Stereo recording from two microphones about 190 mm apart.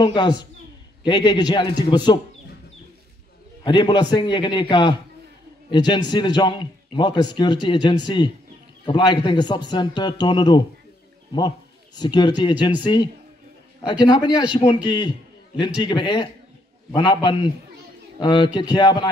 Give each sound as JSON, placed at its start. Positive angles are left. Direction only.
{"t": 0.0, "sound": "a man's voice", "side_deg": 25}
{"t": 3.6, "sound": "a man's voice", "side_deg": 20}